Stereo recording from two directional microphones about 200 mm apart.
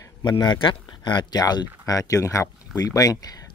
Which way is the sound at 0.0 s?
20° left (ahead or behind).